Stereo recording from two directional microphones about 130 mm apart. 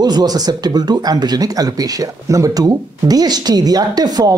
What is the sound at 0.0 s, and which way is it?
Speech, 30° right (ahead or behind).